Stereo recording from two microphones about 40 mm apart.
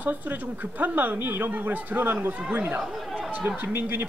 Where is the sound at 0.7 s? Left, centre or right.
Right.